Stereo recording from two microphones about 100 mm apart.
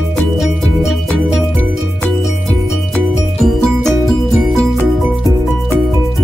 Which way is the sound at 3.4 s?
5° left (ahead or behind).